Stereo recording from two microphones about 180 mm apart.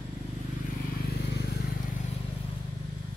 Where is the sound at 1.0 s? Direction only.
60° left (ahead or behind).